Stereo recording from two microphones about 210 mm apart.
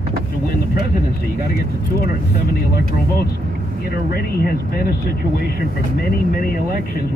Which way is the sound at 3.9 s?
45° left (ahead or behind).